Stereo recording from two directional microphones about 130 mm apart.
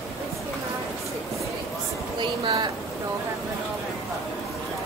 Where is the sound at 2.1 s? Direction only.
35° right (ahead or behind).